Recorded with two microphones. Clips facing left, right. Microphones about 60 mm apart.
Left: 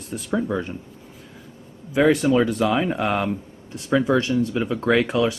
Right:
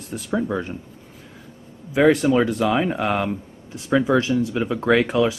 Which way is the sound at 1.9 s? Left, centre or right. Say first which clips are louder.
Right 1 dB; centre.